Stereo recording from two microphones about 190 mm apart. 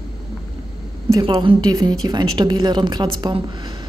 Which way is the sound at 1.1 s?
25° right (ahead or behind).